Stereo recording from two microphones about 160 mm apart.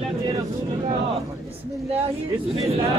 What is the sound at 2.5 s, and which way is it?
Speech, 40° right (ahead or behind).